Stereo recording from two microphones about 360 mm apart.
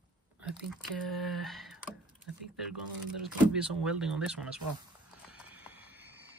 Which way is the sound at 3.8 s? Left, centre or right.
Centre.